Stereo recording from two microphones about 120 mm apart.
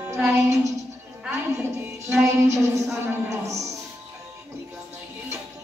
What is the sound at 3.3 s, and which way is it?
Music, 25° right (ahead or behind).